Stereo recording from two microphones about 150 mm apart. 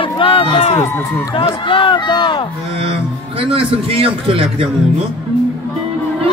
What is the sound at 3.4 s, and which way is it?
A man's voice, 40° right (ahead or behind).